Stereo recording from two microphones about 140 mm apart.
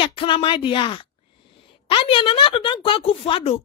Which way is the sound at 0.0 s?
40° left (ahead or behind).